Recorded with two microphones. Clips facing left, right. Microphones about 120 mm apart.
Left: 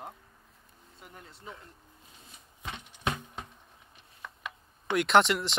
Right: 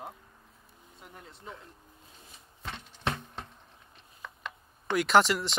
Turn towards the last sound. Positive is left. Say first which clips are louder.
# even
turn(degrees=0)  # may be behind; listen again after turning